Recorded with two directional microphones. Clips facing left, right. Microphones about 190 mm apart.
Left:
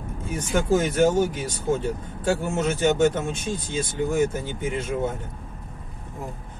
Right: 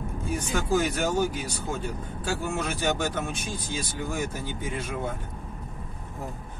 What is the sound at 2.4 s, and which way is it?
Speech, 25° left (ahead or behind).